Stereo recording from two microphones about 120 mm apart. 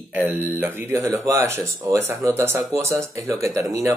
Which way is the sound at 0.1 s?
15° right (ahead or behind).